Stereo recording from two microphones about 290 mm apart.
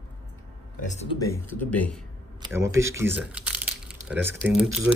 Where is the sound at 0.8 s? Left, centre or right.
Left.